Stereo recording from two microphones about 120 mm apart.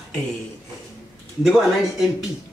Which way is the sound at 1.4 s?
5° right (ahead or behind).